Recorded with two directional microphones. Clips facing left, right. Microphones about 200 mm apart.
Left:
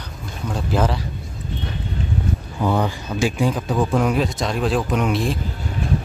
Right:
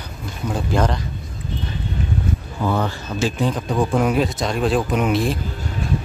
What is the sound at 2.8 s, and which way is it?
Speech, 15° left (ahead or behind).